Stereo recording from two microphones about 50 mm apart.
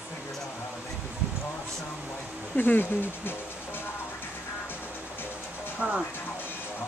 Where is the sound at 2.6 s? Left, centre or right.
Left.